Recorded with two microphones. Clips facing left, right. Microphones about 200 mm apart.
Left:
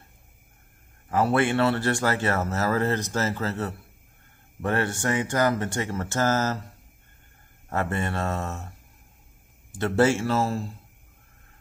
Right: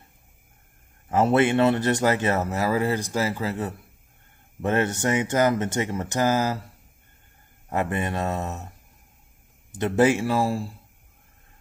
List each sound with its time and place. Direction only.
1.0 s speech: 20° right (ahead or behind)
7.7 s speech: 15° right (ahead or behind)